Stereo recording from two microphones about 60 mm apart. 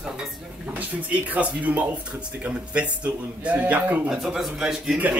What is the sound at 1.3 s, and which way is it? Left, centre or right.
A man's voice, right.